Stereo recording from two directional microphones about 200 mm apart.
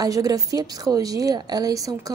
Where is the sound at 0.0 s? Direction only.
20° right (ahead or behind).